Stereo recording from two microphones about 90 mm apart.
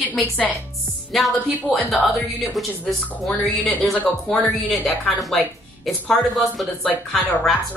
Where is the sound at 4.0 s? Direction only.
20° left (ahead or behind).